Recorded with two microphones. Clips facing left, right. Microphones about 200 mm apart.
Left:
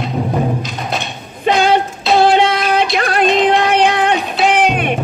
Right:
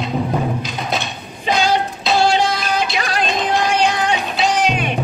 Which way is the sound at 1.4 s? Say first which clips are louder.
Left 4 dB; 60° left (ahead or behind).